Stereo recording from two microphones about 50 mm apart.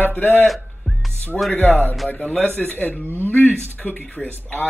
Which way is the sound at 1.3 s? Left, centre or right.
Centre.